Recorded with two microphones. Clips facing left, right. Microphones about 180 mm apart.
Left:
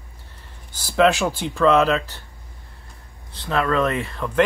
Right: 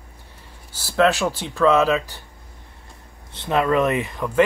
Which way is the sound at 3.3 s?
20° right (ahead or behind).